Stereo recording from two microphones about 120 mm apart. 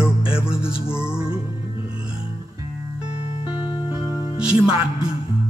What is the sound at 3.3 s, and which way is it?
Music, 50° left (ahead or behind).